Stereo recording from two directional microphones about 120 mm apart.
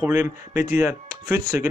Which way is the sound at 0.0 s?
20° right (ahead or behind).